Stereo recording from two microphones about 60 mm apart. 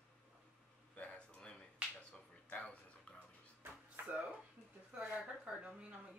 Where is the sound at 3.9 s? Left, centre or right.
Right.